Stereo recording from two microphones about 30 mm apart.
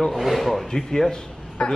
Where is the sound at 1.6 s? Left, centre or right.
Left.